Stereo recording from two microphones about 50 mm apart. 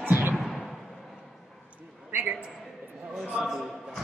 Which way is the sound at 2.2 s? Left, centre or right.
Right.